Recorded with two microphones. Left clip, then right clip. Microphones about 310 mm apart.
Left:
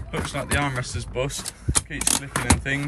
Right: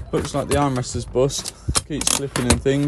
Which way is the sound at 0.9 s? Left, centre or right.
Centre.